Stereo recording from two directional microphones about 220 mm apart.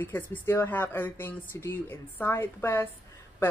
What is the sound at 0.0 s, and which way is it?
Speech, 10° left (ahead or behind).